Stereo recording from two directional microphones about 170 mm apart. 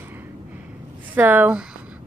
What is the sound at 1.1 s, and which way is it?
Speech, 10° right (ahead or behind).